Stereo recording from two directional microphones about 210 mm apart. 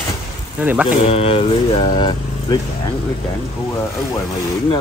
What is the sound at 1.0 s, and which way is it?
Speech, 25° left (ahead or behind).